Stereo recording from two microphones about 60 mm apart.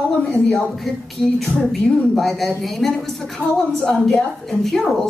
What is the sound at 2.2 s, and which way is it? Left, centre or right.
A man's voice, centre.